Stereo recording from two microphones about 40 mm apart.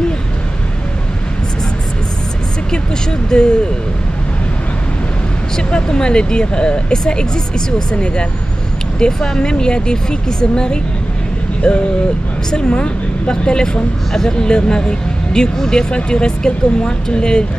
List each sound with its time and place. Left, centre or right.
2.7 s speech: left
5.6 s speech: left